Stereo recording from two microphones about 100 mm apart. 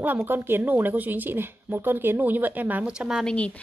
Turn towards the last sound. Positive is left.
turn(degrees=10)  # may be behind; listen again after turning